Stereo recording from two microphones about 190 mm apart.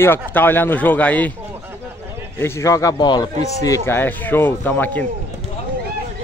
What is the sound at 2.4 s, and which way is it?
A man's voice, 15° left (ahead or behind).